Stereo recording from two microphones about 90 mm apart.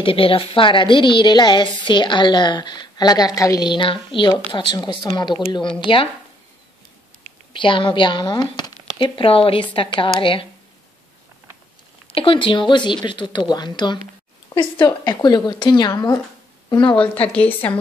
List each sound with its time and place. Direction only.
0.0 s a woman's voice: 90° left; by 3.6 s 45° left (ahead or behind)
3.6 s a woman's voice: 65° left (ahead or behind)
5.9 s a woman's voice: 70° left (ahead or behind)
7.5 s a woman's voice: 65° left (ahead or behind); by 9.7 s 90° left
9.8 s a woman's voice: 75° left (ahead or behind)
12.1 s a woman's voice: 85° left; by 13.9 s 55° left (ahead or behind)
15.2 s a woman's voice: 50° left (ahead or behind)
17.3 s a woman's voice: 15° left (ahead or behind)